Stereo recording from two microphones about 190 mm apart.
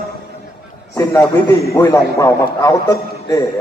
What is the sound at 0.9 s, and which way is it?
A man's voice, 15° left (ahead or behind).